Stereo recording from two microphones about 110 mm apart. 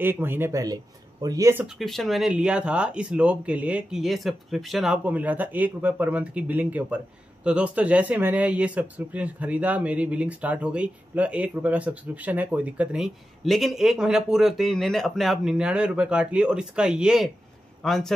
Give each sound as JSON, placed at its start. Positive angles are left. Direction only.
{"t": 0.0, "sound": "speech", "side_deg": -20}
{"t": 1.8, "sound": "speech", "side_deg": 0}
{"t": 4.9, "sound": "speech", "side_deg": -15}